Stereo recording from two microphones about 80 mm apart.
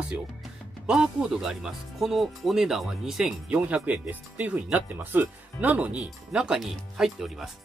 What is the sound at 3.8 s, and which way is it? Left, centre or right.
Speech, centre.